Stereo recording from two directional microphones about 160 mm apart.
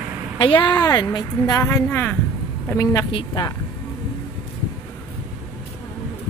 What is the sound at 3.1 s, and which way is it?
Speech, 25° left (ahead or behind).